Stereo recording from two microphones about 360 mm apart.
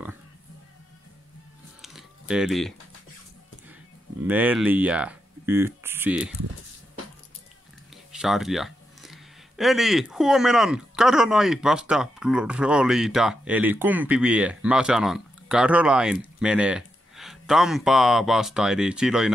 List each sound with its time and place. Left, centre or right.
1.8 s a sound: centre
4.3 s speech: centre
7.9 s speech: centre